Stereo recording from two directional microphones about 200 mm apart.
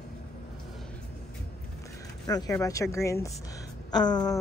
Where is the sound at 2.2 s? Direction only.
20° left (ahead or behind).